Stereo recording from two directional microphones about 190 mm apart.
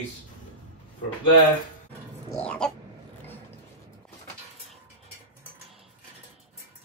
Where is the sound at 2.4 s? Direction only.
5° left (ahead or behind).